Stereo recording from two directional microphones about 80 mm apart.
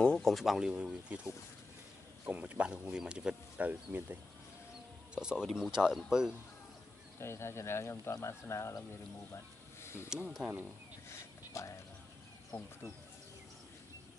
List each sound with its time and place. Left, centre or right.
0.0 s speech: centre; by 4.2 s right
5.1 s speech: centre
7.2 s speech: left
10.4 s speech: centre
11.1 s a sound: left
12.5 s speech: left